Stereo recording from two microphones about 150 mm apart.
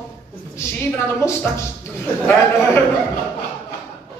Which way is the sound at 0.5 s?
15° left (ahead or behind).